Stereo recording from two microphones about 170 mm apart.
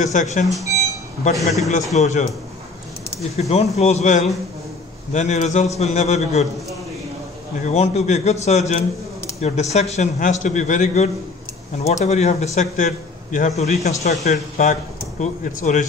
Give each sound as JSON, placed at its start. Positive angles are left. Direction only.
{"t": 0.0, "sound": "a man's voice", "side_deg": 45}
{"t": 1.3, "sound": "a man's voice", "side_deg": 0}
{"t": 2.0, "sound": "a man's voice", "side_deg": 40}
{"t": 3.3, "sound": "a man's voice", "side_deg": 40}
{"t": 7.6, "sound": "a man's voice", "side_deg": 40}